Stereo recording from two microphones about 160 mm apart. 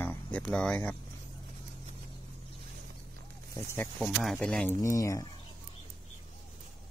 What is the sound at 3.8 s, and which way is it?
Speech, centre (ahead or behind).